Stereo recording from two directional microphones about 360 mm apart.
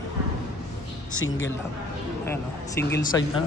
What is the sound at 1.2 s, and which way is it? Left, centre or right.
Speech, left.